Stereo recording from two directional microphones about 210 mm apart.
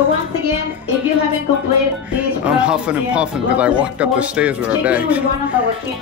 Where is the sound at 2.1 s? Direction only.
5° right (ahead or behind).